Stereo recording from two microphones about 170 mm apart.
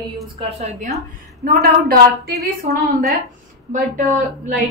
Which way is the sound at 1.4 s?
65° right (ahead or behind).